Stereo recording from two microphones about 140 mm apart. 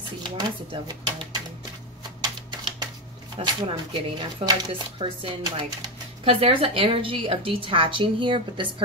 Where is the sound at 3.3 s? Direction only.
35° right (ahead or behind).